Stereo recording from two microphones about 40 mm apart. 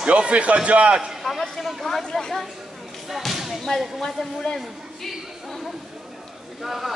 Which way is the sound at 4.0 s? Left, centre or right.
Centre.